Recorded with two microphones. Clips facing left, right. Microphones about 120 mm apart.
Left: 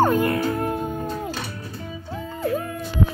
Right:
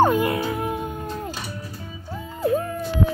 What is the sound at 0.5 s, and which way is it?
Music, 5° right (ahead or behind).